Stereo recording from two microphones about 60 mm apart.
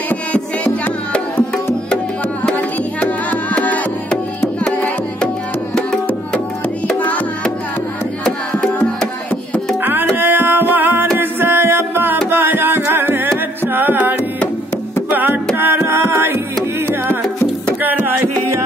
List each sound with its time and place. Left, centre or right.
3.0 s music: left
7.0 s music: left
9.8 s music: right
15.8 s a sound: right
17.8 s music: right